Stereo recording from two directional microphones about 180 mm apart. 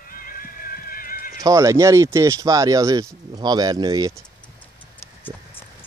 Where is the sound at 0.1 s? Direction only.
50° left (ahead or behind).